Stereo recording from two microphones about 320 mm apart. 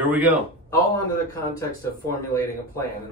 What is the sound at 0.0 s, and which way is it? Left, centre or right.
Speech, centre.